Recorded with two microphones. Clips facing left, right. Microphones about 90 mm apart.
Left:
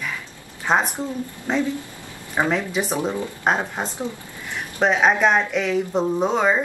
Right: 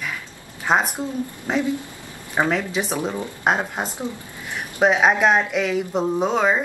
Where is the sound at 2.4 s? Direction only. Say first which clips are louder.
Even; centre (ahead or behind).